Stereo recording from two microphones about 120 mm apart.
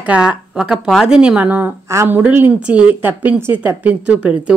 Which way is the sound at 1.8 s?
25° right (ahead or behind).